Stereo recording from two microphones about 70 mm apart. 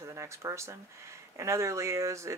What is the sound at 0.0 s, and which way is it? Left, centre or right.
Speech, right.